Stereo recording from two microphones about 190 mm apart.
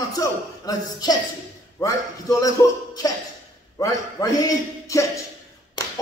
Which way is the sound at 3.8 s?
20° left (ahead or behind).